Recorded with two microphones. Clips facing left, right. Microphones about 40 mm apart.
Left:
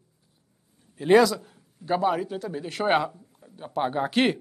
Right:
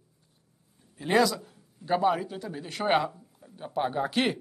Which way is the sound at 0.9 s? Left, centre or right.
Centre.